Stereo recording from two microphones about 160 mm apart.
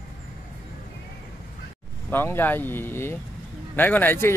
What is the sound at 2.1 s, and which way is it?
A man's voice, 15° left (ahead or behind).